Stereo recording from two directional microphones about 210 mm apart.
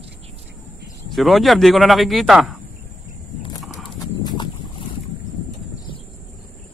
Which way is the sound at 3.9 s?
20° left (ahead or behind).